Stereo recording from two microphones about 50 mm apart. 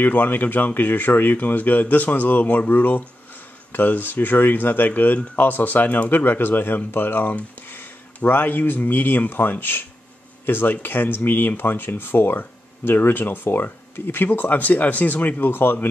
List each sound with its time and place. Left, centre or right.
0.0 s speech: left